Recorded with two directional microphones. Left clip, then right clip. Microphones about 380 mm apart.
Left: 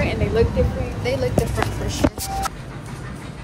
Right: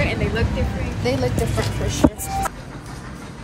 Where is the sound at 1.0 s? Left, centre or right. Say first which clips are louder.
Right 1 dB; centre.